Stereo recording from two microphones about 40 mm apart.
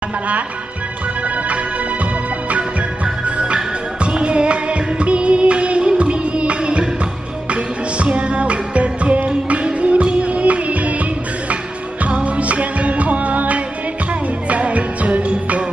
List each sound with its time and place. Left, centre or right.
1.2 s music: right
3.3 s music: right